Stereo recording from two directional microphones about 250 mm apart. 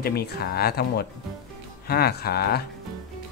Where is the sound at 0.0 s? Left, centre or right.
Left.